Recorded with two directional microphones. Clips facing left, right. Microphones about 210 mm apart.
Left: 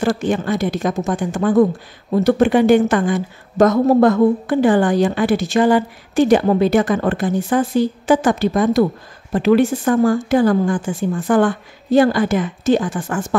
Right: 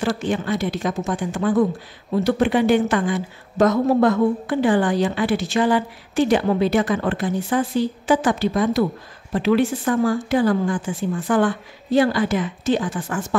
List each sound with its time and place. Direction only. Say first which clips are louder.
0.0 s speech: left 4 dB; 45° left (ahead or behind)